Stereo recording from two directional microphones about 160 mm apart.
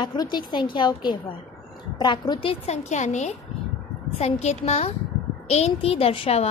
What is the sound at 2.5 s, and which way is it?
A child's voice, 40° left (ahead or behind).